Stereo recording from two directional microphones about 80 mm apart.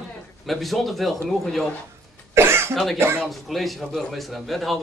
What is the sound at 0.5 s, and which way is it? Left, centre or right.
A man's voice, centre.